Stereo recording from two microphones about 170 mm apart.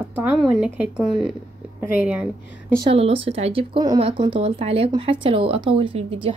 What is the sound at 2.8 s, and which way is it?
Speech, 35° right (ahead or behind).